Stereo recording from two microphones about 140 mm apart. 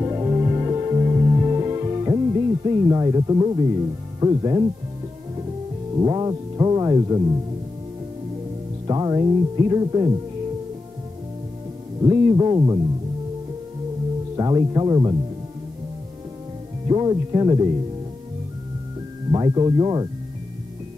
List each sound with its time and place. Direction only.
0.0 s music: 25° right (ahead or behind)
4.2 s speech: 30° right (ahead or behind)
5.9 s speech: 30° right (ahead or behind)
8.8 s speech: 30° right (ahead or behind)
12.0 s speech: 25° right (ahead or behind)
14.3 s speech: 25° right (ahead or behind)
16.8 s speech: 30° right (ahead or behind)
19.3 s speech: 30° right (ahead or behind)